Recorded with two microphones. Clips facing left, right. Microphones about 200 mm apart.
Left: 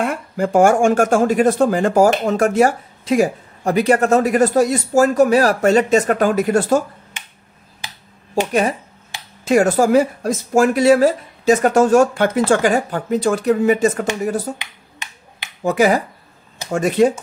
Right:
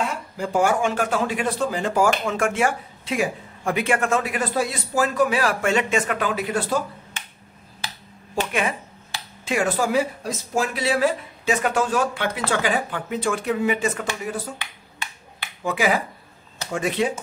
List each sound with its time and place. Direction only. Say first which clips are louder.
0.0 s speech: left 7 dB; 55° left (ahead or behind)
8.5 s speech: left 7 dB; 40° left (ahead or behind)
15.6 s speech: left 7 dB; 45° left (ahead or behind)